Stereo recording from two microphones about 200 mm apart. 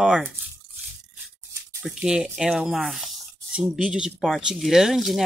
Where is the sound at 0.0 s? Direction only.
5° right (ahead or behind).